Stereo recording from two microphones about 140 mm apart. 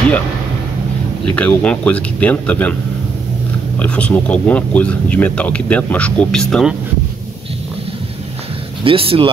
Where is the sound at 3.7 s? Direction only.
10° left (ahead or behind).